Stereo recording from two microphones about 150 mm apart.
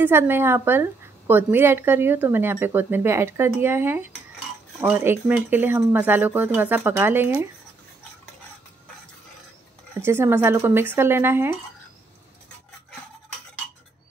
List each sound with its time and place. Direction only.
0.0 s a woman's voice: 15° right (ahead or behind)
10.0 s a woman's voice: 15° right (ahead or behind)